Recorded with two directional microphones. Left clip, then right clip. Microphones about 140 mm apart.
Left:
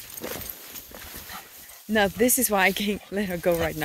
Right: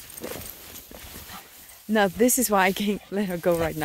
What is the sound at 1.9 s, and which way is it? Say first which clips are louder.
Speech: right 1 dB; 35° right (ahead or behind).